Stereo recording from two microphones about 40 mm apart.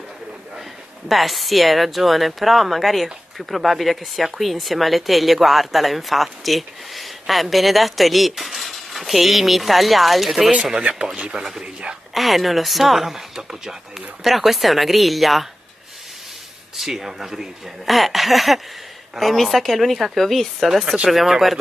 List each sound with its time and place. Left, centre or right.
1.0 s speech: centre
10.5 s speech: right
11.6 s speech: right
12.1 s speech: centre
16.7 s speech: centre